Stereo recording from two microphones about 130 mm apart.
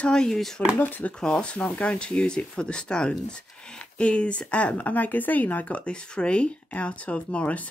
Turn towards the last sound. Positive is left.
turn(degrees=10)  # may be behind; listen again after turning